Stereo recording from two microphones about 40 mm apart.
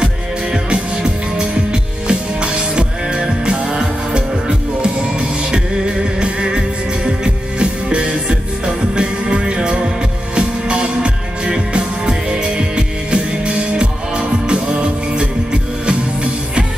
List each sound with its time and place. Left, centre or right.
0.0 s music: centre